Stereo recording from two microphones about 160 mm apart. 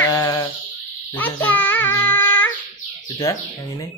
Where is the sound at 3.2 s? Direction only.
20° left (ahead or behind).